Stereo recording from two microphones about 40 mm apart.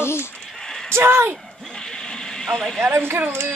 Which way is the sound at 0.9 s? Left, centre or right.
Right.